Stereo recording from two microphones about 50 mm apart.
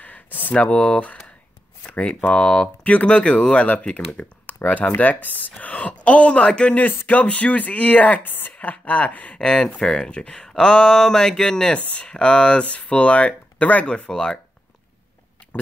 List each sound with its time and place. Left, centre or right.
0.0 s a sound: left
0.6 s speech: left
6.7 s speech: left; by 14.4 s centre